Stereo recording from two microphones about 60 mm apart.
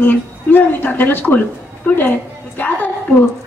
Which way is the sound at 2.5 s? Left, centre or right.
Left.